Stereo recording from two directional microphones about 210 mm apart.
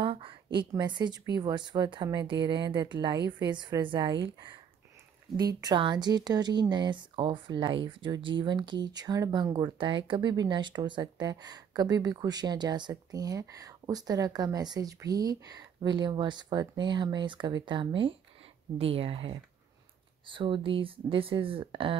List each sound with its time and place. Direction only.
0.0 s speech: 25° right (ahead or behind)
5.6 s speech: 20° right (ahead or behind)